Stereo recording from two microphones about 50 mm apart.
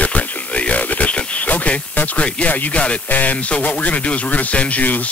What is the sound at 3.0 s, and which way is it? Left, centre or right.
Speech, left.